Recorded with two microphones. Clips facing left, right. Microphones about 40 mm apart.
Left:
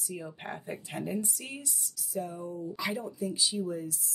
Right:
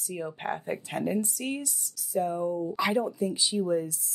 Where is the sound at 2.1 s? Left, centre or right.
Right.